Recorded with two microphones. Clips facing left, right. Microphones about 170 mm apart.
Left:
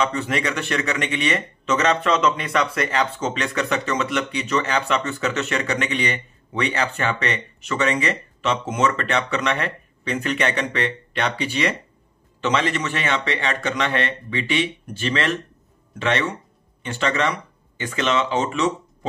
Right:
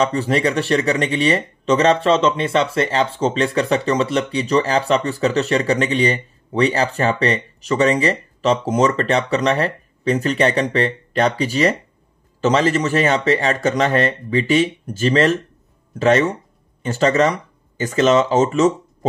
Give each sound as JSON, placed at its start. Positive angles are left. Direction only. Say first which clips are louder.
{"t": 0.0, "sound": "speech", "louder": "right 5 dB", "side_deg": -35}